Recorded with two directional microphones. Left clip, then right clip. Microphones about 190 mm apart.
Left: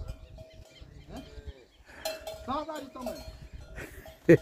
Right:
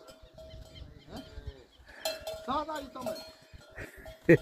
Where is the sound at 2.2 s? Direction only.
10° right (ahead or behind).